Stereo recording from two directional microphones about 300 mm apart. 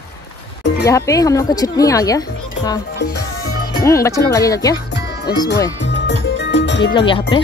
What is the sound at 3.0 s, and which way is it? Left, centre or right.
Music, left.